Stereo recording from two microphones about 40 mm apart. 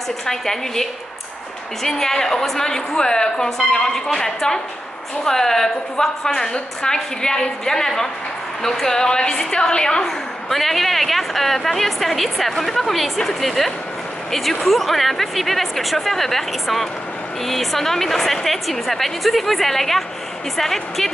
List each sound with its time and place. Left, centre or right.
0.3 s a woman's voice: centre
10.5 s a woman's voice: centre